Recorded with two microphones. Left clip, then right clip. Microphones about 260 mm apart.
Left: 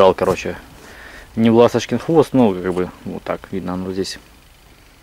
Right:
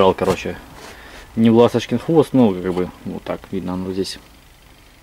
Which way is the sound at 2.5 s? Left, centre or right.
Centre.